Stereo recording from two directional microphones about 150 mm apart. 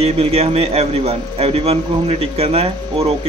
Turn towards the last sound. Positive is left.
turn(degrees=-40)  # may be behind; listen again after turning